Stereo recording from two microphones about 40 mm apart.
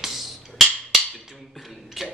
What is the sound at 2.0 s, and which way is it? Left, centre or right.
Tick-tock, centre.